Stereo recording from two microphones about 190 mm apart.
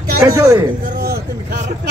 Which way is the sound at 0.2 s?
15° right (ahead or behind).